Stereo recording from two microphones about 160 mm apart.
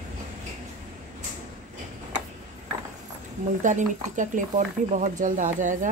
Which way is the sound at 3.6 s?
50° right (ahead or behind).